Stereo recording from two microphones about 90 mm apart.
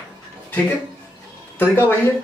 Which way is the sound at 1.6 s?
25° left (ahead or behind).